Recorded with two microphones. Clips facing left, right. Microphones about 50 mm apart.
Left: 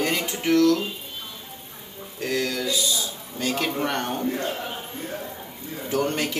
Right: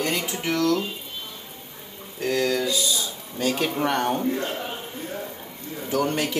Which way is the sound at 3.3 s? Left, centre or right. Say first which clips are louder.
Right 1 dB; centre.